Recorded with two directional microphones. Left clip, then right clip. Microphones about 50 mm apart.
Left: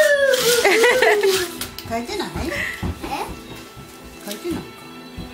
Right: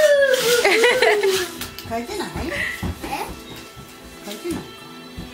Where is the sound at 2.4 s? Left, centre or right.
Centre.